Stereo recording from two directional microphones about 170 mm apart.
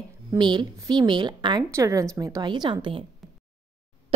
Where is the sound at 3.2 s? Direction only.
Centre (ahead or behind).